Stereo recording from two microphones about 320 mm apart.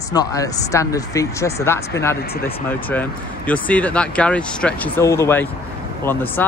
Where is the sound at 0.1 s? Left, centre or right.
Centre.